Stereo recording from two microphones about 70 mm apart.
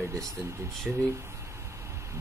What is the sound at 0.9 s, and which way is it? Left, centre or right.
Speech, centre.